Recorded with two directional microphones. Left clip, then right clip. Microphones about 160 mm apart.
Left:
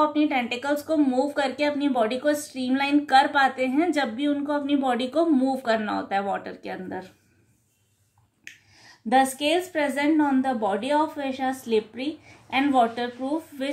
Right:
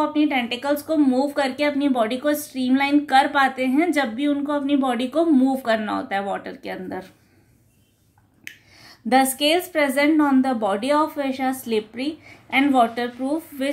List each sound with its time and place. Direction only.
0.0 s a woman's voice: 15° right (ahead or behind)
8.5 s speech: 30° right (ahead or behind)
13.3 s speech: centre (ahead or behind)